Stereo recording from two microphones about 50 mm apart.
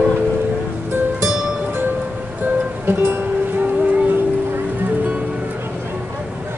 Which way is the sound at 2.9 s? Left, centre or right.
Right.